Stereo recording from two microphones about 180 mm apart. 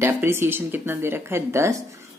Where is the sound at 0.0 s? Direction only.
15° right (ahead or behind).